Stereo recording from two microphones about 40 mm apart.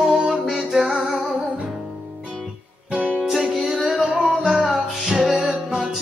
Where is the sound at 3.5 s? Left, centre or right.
Centre.